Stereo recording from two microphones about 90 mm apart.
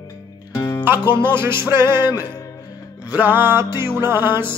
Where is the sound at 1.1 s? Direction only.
25° right (ahead or behind).